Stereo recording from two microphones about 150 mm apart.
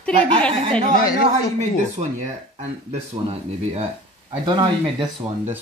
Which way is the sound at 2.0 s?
40° right (ahead or behind).